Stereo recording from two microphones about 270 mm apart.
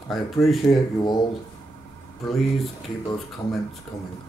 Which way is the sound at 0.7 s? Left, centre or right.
Centre.